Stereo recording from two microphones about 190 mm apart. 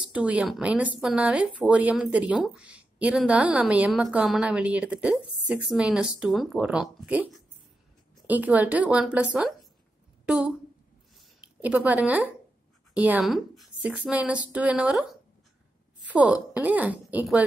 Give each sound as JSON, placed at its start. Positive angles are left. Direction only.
{"t": 0.1, "sound": "speech", "side_deg": -5}
{"t": 11.6, "sound": "speech", "side_deg": -10}